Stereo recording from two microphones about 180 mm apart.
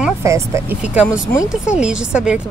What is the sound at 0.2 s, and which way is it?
Speech, 15° right (ahead or behind).